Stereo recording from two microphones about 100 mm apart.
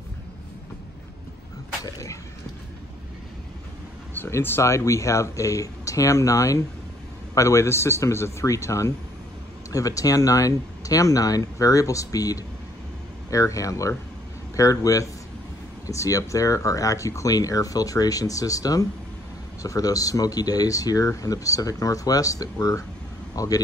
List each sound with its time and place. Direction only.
4.1 s a man's voice: 20° left (ahead or behind)